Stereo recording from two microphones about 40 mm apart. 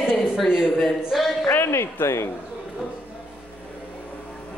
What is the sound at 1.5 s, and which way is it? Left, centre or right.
Speech, left.